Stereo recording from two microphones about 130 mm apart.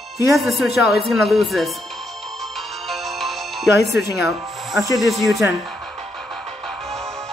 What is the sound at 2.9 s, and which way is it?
Music, centre (ahead or behind).